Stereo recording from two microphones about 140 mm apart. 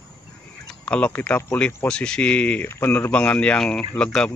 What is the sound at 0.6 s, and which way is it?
Speech, 10° left (ahead or behind).